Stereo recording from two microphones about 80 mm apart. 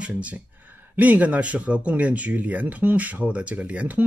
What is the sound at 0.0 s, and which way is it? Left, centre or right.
Speech, centre.